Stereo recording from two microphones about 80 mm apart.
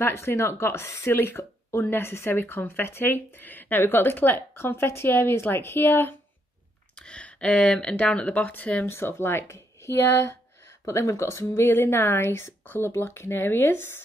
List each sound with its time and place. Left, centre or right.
0.0 s speech: left
7.0 s speech: centre
8.8 s speech: left
10.9 s speech: left